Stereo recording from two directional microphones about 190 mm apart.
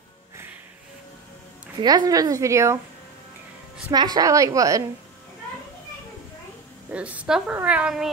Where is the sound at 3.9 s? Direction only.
20° right (ahead or behind).